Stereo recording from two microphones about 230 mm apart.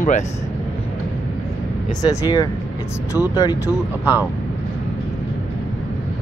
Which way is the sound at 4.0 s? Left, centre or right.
Centre.